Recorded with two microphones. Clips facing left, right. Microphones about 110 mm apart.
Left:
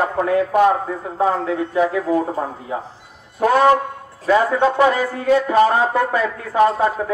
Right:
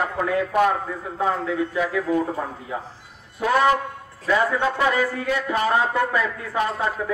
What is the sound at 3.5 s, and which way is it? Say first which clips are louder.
Speech: left 4 dB; 35° left (ahead or behind).